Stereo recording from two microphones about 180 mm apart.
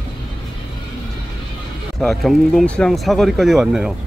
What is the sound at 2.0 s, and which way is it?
Speech, centre (ahead or behind).